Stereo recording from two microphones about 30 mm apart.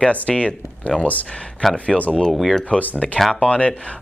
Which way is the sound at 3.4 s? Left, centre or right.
Left.